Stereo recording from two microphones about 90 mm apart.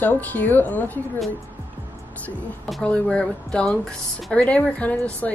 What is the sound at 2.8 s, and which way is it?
A woman's voice, 10° left (ahead or behind).